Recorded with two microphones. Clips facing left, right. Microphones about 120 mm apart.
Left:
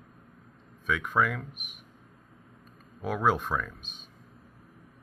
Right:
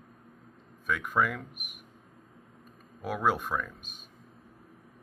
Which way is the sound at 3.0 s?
5° right (ahead or behind).